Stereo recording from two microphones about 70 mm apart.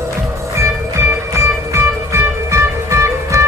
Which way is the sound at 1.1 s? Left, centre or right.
Right.